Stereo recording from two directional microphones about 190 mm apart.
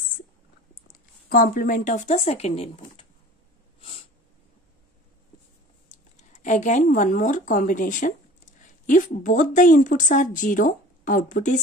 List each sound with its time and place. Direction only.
1.3 s a woman's voice: 50° left (ahead or behind); by 2.8 s 30° left (ahead or behind)
5.9 s speech: 40° left (ahead or behind)